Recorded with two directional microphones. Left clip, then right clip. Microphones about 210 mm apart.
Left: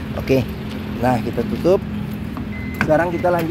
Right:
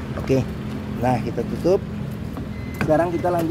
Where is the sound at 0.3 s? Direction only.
5° left (ahead or behind).